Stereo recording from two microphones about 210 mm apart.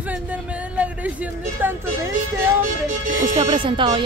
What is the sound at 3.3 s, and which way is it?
Speech, 25° right (ahead or behind).